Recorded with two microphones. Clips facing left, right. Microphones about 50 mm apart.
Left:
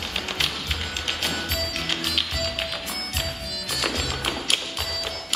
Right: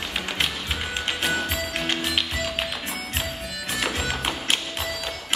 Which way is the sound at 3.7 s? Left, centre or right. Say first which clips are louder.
Right 1 dB; right.